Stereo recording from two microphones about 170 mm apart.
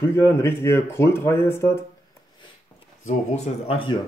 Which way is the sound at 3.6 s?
35° left (ahead or behind).